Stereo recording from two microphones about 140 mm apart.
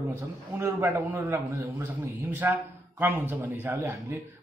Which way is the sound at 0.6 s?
15° right (ahead or behind).